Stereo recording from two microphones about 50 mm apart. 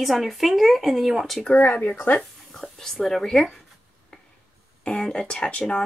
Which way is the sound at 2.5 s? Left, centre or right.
Centre.